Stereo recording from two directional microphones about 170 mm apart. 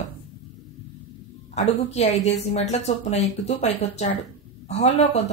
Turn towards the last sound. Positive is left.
turn(degrees=40)  # may be behind; listen again after turning